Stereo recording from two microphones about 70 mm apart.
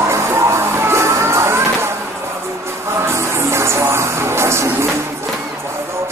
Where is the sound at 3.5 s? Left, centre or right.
Right.